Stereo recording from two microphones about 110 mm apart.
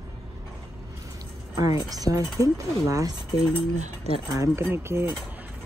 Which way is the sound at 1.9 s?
35° right (ahead or behind).